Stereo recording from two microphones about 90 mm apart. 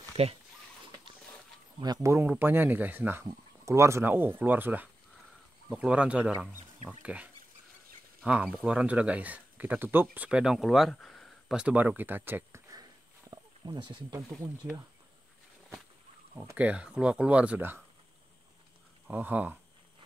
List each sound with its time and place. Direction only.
2.0 s speech: 20° right (ahead or behind)
8.3 s speech: 15° right (ahead or behind)
10.4 s speech: 5° right (ahead or behind)
11.5 s speech: 15° right (ahead or behind)
13.7 s speech: 65° right (ahead or behind)
16.5 s speech: 15° right (ahead or behind)
19.0 s speech: 20° right (ahead or behind)